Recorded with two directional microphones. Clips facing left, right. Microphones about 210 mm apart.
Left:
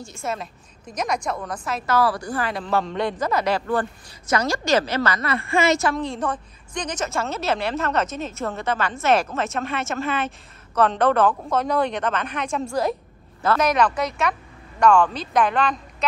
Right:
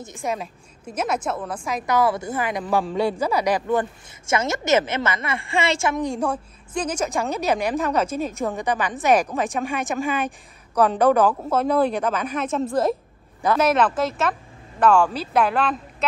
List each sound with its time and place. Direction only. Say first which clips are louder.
0.0 s a woman's voice: right 2 dB; 15° right (ahead or behind)